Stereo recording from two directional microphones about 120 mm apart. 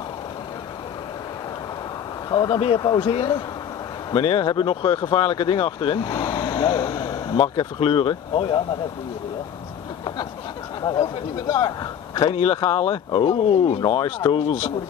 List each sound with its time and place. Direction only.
2.3 s speech: 35° left (ahead or behind)
7.4 s speech: 45° left (ahead or behind)
10.8 s speech: 30° left (ahead or behind)
12.3 s speech: 55° left (ahead or behind)